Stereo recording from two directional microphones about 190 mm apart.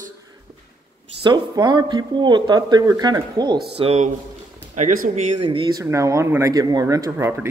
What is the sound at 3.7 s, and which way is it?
Speech, 30° right (ahead or behind).